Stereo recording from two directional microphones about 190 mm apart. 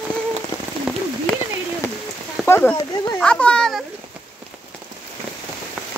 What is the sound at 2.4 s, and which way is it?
A child's voice, 10° left (ahead or behind).